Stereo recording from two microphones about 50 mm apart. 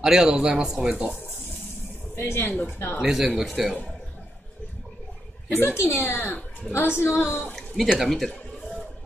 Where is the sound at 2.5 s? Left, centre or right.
Left.